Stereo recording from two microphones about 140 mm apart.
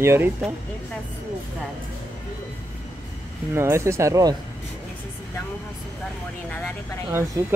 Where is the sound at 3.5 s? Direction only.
20° right (ahead or behind).